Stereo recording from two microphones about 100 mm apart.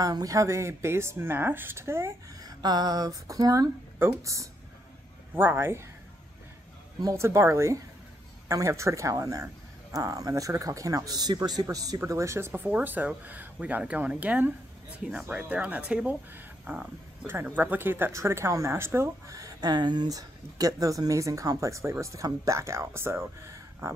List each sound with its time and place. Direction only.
0.0 s speech: 35° right (ahead or behind)
7.0 s speech: 30° right (ahead or behind); by 16.2 s 10° right (ahead or behind)
16.3 s a sound: 15° right (ahead or behind)
17.3 s speech: 20° right (ahead or behind)